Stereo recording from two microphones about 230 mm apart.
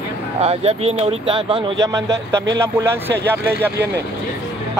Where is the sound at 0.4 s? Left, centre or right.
Right; by 3.7 s centre.